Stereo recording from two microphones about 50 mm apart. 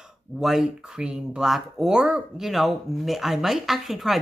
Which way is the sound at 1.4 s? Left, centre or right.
Centre.